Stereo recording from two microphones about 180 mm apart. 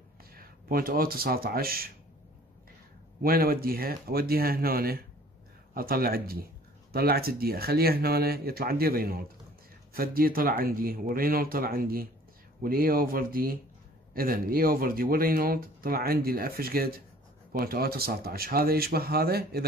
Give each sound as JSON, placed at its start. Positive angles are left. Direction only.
{"t": 0.3, "sound": "speech", "side_deg": -55}
{"t": 3.2, "sound": "speech", "side_deg": -55}